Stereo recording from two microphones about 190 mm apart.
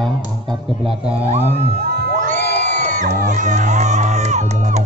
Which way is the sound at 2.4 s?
65° left (ahead or behind).